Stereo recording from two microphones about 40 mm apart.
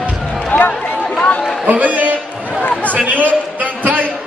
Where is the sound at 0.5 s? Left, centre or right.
Left.